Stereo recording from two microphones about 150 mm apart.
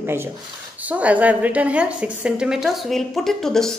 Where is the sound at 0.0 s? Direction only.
15° right (ahead or behind).